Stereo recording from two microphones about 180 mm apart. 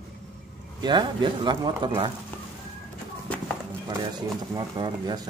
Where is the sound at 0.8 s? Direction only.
25° right (ahead or behind).